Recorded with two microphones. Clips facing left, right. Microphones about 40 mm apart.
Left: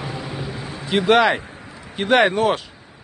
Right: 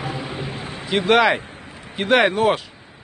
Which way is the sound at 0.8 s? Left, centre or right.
Centre.